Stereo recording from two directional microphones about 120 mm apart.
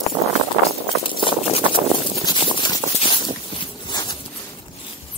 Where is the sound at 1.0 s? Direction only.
45° left (ahead or behind).